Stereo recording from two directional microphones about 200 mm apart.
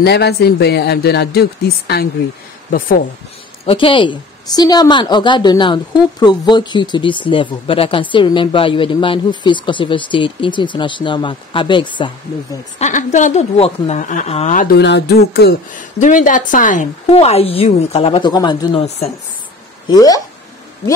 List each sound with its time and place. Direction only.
0.0 s speech: 55° left (ahead or behind)
3.6 s speech: 25° left (ahead or behind)
12.7 s a woman's voice: 35° left (ahead or behind)
14.8 s speech: 60° left (ahead or behind)
16.0 s a woman's voice: 40° left (ahead or behind)